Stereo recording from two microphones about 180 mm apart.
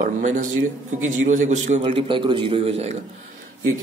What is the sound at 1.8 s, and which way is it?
A man's voice, 30° right (ahead or behind).